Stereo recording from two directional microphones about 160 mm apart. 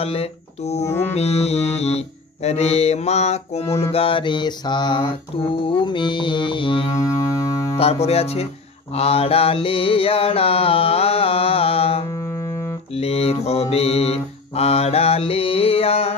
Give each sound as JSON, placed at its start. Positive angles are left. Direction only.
{"t": 0.0, "sound": "mantra", "side_deg": 40}
{"t": 7.2, "sound": "music", "side_deg": 20}
{"t": 7.7, "sound": "mantra", "side_deg": 40}
{"t": 12.1, "sound": "music", "side_deg": 20}
{"t": 12.9, "sound": "mantra", "side_deg": 40}